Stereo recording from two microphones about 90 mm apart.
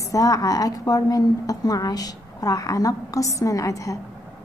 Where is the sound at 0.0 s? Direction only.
40° left (ahead or behind).